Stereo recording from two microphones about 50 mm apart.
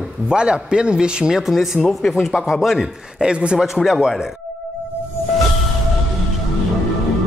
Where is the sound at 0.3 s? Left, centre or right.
Centre.